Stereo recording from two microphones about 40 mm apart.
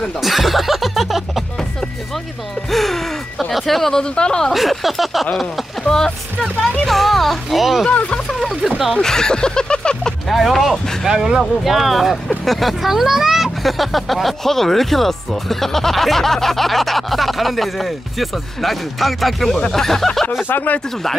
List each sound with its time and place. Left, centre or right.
0.2 s speech: centre
2.7 s speech: centre
4.0 s speech: left
4.5 s speech: centre
5.9 s speech: centre
6.9 s speech: centre
8.9 s speech: centre
10.2 s speech: centre
11.1 s speech: centre
11.6 s speech: centre